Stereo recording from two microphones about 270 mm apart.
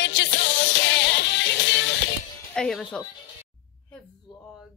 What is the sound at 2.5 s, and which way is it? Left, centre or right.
Speech, centre.